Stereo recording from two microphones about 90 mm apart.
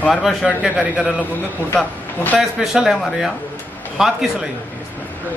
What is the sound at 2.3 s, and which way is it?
Speech, centre (ahead or behind).